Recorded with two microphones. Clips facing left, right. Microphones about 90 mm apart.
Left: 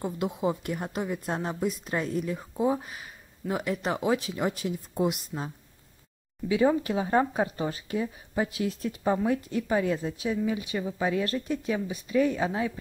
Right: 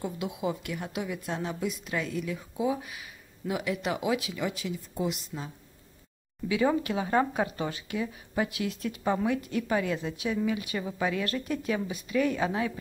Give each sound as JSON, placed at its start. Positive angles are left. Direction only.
{"t": 0.0, "sound": "speech", "side_deg": 40}
{"t": 6.8, "sound": "a woman's voice", "side_deg": 30}